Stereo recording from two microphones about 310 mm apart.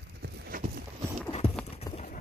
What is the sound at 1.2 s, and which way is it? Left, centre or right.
Clip-clop, centre.